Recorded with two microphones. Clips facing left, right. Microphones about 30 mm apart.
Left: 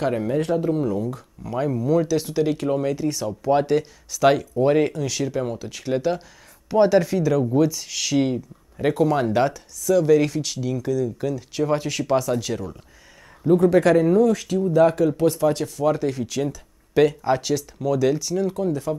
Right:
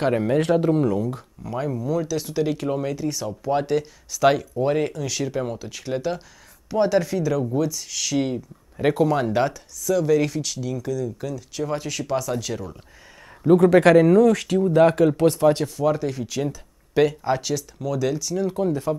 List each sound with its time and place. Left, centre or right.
0.0 s speech: centre
0.4 s speech: right
0.7 s speech: centre
1.4 s speech: centre
2.3 s speech: centre
8.7 s speech: centre
13.7 s speech: right
15.6 s speech: centre
18.6 s speech: centre